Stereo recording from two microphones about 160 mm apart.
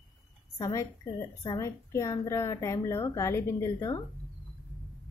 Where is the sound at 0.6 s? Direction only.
20° left (ahead or behind).